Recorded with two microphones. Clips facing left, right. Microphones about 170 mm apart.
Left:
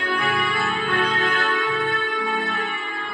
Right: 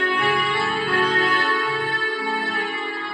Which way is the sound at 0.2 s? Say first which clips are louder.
Right 2 dB; 30° right (ahead or behind).